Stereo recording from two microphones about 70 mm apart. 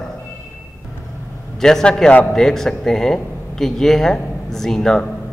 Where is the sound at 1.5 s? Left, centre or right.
Centre.